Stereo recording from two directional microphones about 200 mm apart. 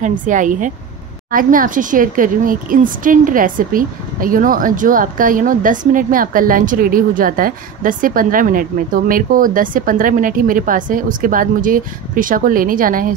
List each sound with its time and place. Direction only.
0.0 s a woman's voice: 40° right (ahead or behind)